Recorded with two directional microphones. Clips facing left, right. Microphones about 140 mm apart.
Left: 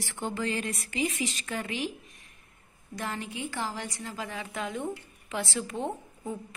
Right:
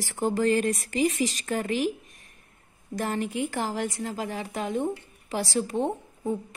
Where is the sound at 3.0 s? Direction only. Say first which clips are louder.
Right 7 dB; 45° right (ahead or behind).